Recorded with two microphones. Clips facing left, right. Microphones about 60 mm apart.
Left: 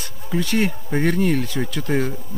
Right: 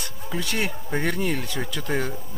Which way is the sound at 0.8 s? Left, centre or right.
Centre.